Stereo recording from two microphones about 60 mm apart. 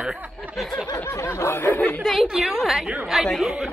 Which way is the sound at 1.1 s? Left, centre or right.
Left.